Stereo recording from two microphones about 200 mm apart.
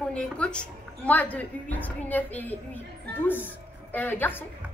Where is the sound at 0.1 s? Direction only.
5° left (ahead or behind).